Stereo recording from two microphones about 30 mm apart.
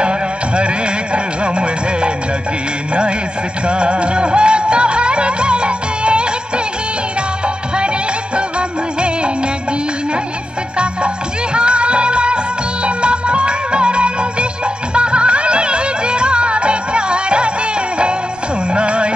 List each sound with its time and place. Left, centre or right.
0.0 s music: right
11.5 s music: right